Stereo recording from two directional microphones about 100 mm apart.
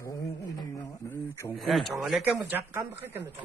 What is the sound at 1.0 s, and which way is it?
Speech, 25° left (ahead or behind).